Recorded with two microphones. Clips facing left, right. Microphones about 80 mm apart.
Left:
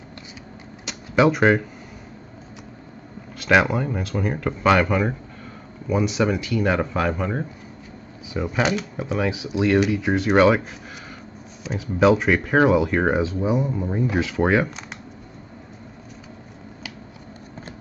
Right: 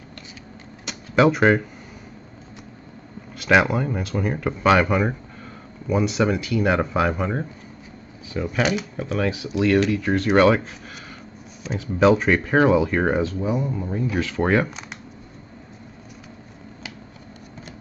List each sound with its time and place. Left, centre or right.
0.8 s a sound: centre
3.3 s speech: centre
8.3 s speech: centre
8.9 s speech: centre
13.3 s speech: centre